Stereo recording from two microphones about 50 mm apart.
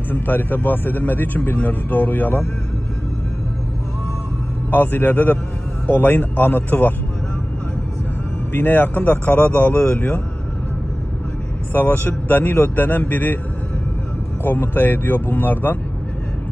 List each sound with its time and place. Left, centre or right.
0.1 s a man's voice: left
4.6 s a man's voice: left
8.5 s a man's voice: left
11.7 s a man's voice: left
14.4 s a man's voice: left